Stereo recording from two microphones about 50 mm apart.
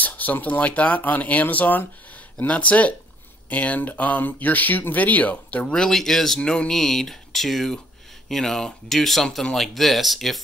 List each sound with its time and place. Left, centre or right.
0.0 s speech: left
5.9 s speech: centre